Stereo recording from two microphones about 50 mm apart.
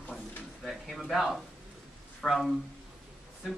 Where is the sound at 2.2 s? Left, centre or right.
Centre.